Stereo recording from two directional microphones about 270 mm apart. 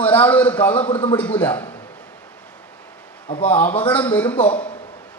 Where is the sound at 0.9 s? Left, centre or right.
Centre.